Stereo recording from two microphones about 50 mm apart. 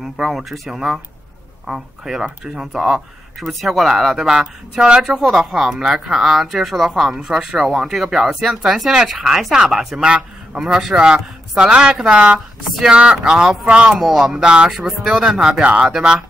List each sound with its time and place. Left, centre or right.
0.0 s speech: centre
11.0 s speech: centre
14.0 s speech: centre
14.3 s speech: centre
14.9 s speech: centre